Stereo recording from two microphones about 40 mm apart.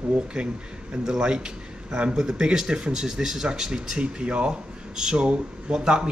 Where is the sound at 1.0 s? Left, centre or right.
Centre.